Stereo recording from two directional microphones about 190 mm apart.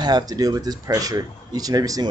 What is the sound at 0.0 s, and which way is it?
A man's voice, 20° right (ahead or behind).